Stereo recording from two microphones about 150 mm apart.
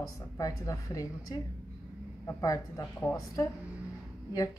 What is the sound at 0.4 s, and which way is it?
A woman's voice, 20° left (ahead or behind).